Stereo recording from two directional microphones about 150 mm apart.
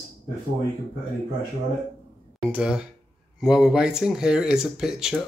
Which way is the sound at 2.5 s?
5° right (ahead or behind).